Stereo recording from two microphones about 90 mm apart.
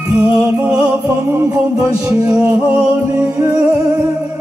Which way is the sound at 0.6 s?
10° right (ahead or behind).